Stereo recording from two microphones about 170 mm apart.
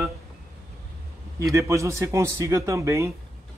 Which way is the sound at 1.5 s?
15° right (ahead or behind).